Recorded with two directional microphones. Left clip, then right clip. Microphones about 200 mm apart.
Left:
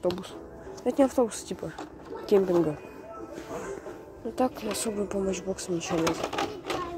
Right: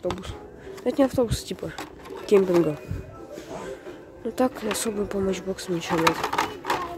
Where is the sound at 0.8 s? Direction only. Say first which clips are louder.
Right 2 dB; 15° right (ahead or behind).